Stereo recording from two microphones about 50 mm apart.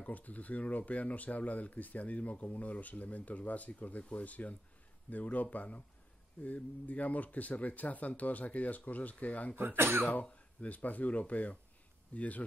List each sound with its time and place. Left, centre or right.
0.0 s speech: left
9.6 s speech: right
10.2 s speech: left